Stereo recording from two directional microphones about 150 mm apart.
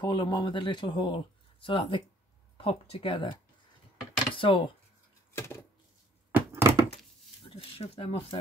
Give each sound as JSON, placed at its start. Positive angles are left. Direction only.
{"t": 0.0, "sound": "speech", "side_deg": 30}
{"t": 5.3, "sound": "dishes", "side_deg": 15}
{"t": 6.3, "sound": "a sound", "side_deg": -15}
{"t": 7.4, "sound": "speech", "side_deg": 40}